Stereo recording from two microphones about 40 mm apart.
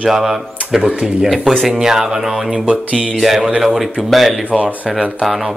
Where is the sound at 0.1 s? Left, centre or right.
Centre.